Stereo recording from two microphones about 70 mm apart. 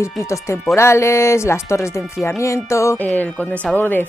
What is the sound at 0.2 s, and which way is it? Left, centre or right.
Speech, left.